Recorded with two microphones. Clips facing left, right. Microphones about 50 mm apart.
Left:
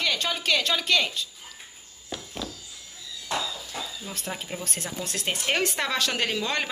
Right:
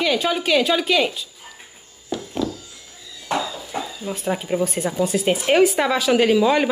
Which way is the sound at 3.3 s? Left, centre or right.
Right.